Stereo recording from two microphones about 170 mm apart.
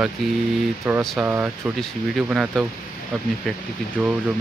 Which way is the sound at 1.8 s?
Centre (ahead or behind).